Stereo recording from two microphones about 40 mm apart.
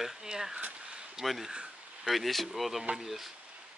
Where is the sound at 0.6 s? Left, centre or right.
Right.